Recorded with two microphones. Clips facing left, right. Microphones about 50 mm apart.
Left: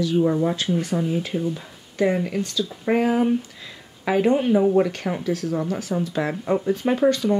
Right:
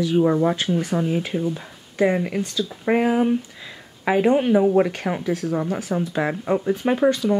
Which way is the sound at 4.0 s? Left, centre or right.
Right.